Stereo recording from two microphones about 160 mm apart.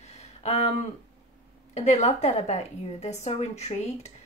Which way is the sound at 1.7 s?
45° left (ahead or behind).